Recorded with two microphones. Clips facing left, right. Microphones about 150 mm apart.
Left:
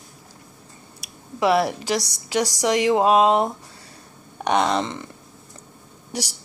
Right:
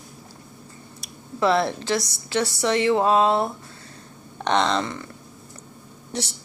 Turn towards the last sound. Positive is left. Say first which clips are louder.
# even
turn(degrees=10)  # may be behind; listen again after turning